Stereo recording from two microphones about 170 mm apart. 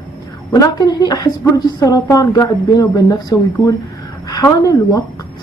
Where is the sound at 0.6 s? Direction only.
20° left (ahead or behind).